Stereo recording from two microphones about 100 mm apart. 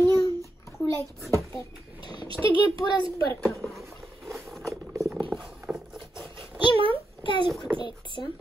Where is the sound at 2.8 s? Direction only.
45° left (ahead or behind).